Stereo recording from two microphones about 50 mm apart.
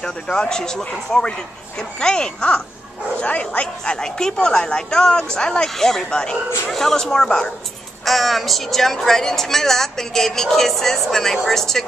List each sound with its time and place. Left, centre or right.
0.0 s a woman's voice: centre
8.0 s a woman's voice: centre